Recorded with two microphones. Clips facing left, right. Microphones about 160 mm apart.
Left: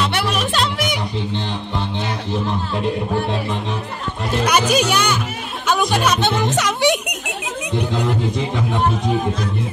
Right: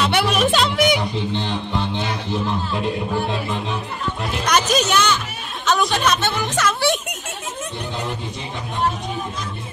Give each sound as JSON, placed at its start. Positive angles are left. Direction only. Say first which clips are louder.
{"t": 0.0, "sound": "music", "louder": "right 2 dB", "side_deg": 0}
{"t": 4.5, "sound": "speech", "louder": "left 1 dB", "side_deg": 10}